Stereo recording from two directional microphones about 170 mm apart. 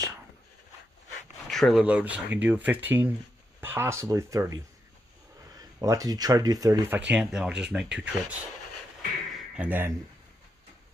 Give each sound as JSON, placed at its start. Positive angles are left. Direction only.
{"t": 1.5, "sound": "speech", "side_deg": 0}
{"t": 7.0, "sound": "speech", "side_deg": -5}
{"t": 9.3, "sound": "a sound", "side_deg": -10}